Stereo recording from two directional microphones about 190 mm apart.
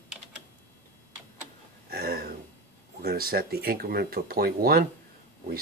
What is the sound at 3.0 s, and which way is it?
Speech, 50° right (ahead or behind).